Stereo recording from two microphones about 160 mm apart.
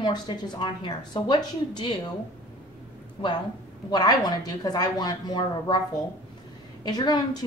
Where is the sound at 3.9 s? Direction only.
25° left (ahead or behind).